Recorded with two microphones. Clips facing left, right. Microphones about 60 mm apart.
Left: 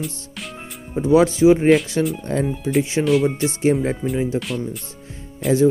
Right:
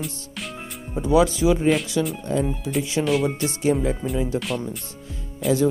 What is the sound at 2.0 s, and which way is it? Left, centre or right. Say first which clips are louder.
Speech: left 2 dB; left.